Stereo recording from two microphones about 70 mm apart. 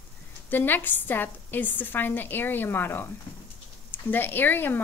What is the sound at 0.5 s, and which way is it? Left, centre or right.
A woman's voice, left.